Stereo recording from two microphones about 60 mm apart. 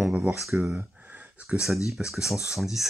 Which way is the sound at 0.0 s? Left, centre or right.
Right.